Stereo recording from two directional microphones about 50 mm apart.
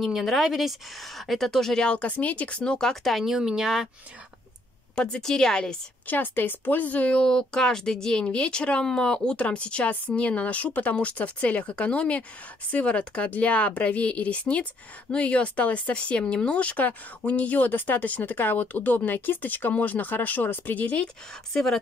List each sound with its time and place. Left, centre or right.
0.0 s speech: centre
1.9 s speech: left; by 3.3 s centre
3.3 s speech: centre
4.9 s speech: centre
6.0 s speech: left
7.2 s speech: centre; by 20.9 s left